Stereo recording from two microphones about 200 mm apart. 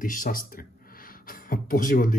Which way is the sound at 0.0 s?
45° left (ahead or behind).